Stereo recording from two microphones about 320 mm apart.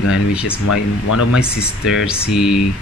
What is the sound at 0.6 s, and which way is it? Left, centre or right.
Speech, left.